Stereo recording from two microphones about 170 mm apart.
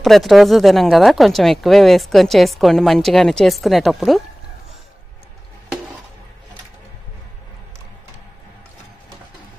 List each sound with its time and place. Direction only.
0.0 s speech: centre (ahead or behind)